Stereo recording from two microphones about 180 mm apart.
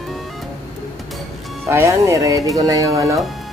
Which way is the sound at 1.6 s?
15° right (ahead or behind).